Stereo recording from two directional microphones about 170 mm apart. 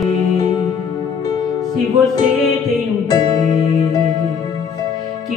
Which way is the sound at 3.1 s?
25° left (ahead or behind).